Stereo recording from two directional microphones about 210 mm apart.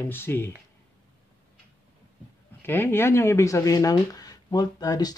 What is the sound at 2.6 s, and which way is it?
Speech, 10° left (ahead or behind).